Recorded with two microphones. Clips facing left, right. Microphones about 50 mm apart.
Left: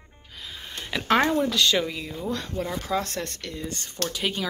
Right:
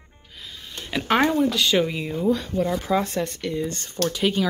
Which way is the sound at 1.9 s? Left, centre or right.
Centre.